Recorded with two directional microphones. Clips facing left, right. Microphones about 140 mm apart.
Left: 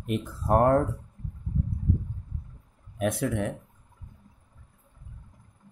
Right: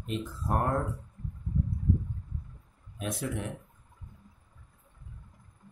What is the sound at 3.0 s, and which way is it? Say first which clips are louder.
Speech: left 8 dB; 60° left (ahead or behind).